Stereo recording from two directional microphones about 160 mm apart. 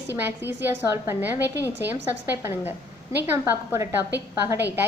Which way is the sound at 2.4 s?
15° right (ahead or behind).